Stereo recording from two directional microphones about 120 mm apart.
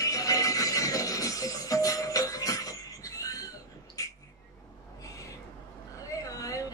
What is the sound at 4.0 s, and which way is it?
Bird, 30° left (ahead or behind).